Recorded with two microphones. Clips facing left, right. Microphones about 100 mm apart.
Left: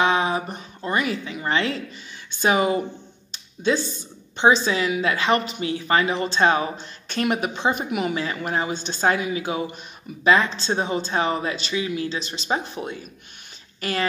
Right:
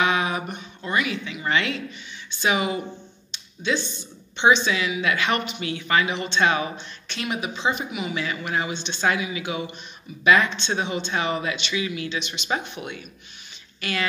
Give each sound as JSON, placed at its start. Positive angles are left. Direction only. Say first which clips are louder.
{"t": 0.0, "sound": "speech", "louder": "left 2 dB", "side_deg": 30}
{"t": 3.3, "sound": "a sound", "louder": "left 4 dB", "side_deg": 45}
{"t": 4.4, "sound": "speech", "louder": "left 1 dB", "side_deg": 35}